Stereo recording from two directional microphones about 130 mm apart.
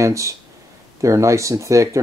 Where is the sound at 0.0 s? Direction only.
25° right (ahead or behind).